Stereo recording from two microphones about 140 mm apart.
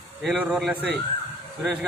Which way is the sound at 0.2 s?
Centre (ahead or behind).